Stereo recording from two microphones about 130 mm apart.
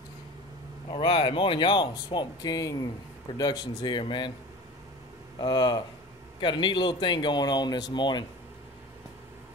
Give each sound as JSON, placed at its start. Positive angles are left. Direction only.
{"t": 0.8, "sound": "speech", "side_deg": 40}
{"t": 5.4, "sound": "speech", "side_deg": 30}